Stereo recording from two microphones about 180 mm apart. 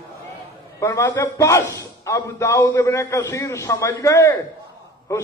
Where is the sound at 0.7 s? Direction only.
15° left (ahead or behind).